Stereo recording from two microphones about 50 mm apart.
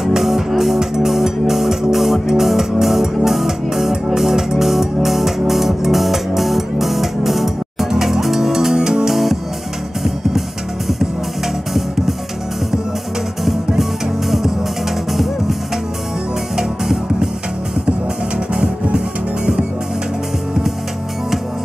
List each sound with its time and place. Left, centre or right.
0.0 s music: centre
13.5 s music: centre
16.5 s music: centre
18.5 s music: right